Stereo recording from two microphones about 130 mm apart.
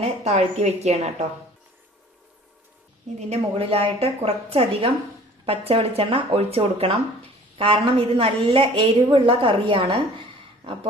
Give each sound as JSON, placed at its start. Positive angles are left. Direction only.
{"t": 0.0, "sound": "a woman's voice", "side_deg": -55}
{"t": 3.2, "sound": "speech", "side_deg": -50}